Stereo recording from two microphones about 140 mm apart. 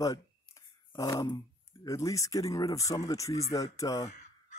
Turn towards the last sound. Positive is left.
turn(degrees=25)  # may be behind; listen again after turning